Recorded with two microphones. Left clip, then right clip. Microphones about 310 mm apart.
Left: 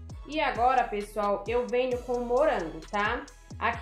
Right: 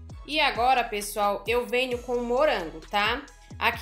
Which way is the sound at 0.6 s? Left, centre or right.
Right.